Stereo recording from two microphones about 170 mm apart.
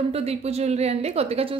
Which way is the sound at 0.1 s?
35° right (ahead or behind).